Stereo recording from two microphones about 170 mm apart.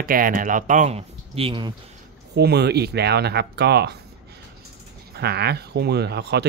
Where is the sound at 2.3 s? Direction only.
75° right (ahead or behind).